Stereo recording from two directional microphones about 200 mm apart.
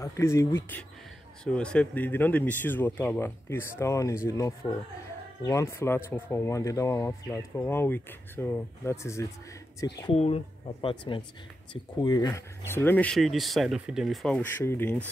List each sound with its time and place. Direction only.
0.0 s speech: 15° left (ahead or behind)
10.1 s speech: 30° left (ahead or behind); by 15.0 s 10° left (ahead or behind)